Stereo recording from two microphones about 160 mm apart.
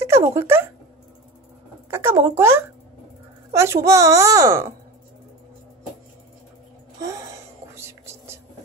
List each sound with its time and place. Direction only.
0.0 s speech: 15° right (ahead or behind)
1.9 s a child's voice: 15° right (ahead or behind)
7.0 s a sound: 20° right (ahead or behind)
7.7 s whispering: 15° right (ahead or behind)